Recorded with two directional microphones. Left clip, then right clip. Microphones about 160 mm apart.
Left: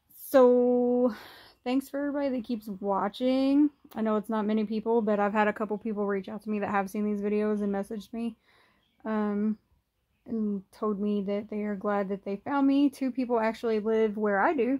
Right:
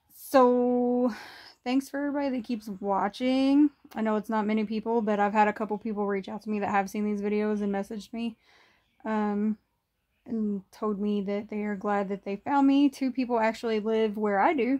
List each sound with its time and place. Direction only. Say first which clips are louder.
0.3 s speech: left 1 dB; 15° right (ahead or behind)